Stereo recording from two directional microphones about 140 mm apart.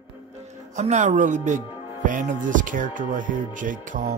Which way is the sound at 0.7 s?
55° right (ahead or behind).